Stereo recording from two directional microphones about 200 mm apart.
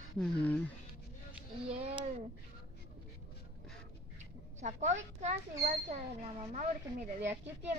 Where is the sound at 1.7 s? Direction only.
30° right (ahead or behind).